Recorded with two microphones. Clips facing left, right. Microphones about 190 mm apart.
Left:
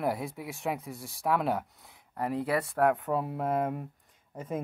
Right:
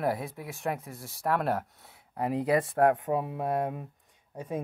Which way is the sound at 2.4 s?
20° right (ahead or behind).